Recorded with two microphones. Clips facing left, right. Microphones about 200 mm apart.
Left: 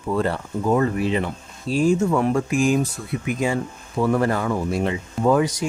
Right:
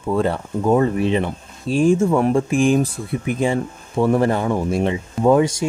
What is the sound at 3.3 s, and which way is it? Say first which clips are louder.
Speech: right 3 dB; 30° right (ahead or behind).